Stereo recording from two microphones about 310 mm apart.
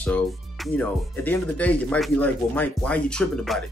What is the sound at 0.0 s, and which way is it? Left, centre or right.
Speech, centre.